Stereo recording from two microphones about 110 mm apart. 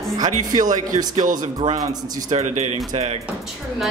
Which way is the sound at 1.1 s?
75° right (ahead or behind).